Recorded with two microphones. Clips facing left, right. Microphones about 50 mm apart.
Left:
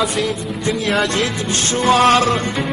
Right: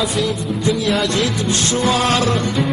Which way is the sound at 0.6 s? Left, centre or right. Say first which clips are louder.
Even; left.